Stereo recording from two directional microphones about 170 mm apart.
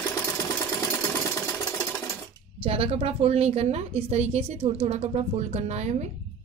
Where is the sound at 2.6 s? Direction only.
35° right (ahead or behind).